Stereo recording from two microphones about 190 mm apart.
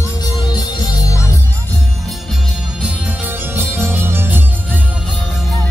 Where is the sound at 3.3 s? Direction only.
10° right (ahead or behind).